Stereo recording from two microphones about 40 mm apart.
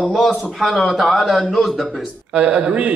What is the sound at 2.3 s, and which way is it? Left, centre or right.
Speech, right.